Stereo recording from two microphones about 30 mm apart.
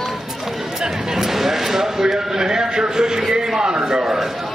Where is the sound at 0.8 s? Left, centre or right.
Centre; by 4.1 s right.